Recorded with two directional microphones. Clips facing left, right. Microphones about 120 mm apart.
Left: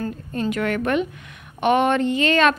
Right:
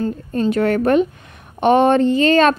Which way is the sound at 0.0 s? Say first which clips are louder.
Right 6 dB; 30° right (ahead or behind).